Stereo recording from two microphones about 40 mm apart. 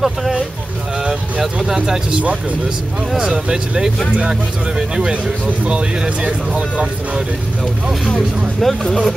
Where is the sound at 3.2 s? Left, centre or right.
Centre.